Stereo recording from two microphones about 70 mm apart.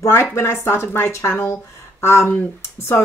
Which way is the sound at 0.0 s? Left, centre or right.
Left.